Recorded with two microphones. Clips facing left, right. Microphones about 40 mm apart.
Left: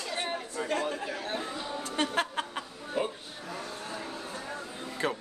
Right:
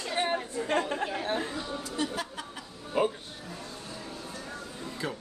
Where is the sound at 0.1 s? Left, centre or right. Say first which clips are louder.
Right 6 dB; right.